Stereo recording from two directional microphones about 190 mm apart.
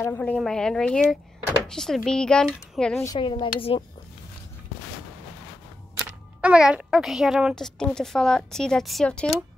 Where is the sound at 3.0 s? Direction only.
20° left (ahead or behind).